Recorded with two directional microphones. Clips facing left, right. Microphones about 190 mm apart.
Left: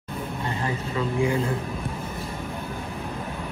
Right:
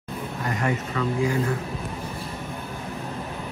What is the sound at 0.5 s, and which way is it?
Speech, 30° left (ahead or behind).